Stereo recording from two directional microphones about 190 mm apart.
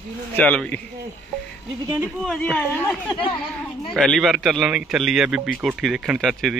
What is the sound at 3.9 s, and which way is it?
A man's voice, centre (ahead or behind).